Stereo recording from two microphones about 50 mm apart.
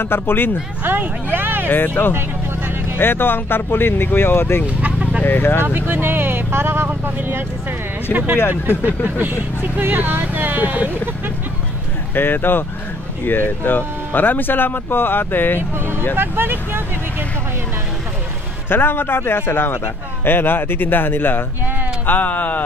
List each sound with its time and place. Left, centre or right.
0.0 s a man's voice: left
0.8 s speech: right
1.7 s a man's voice: left
4.8 s a sound: right
5.2 s a man's voice: left
5.6 s speech: right
12.1 s a man's voice: left
16.2 s speech: right
18.7 s a man's voice: left
22.0 s speech: left